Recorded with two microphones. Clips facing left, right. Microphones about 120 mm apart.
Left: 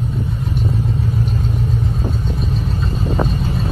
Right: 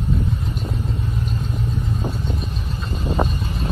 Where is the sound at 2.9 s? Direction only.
35° left (ahead or behind).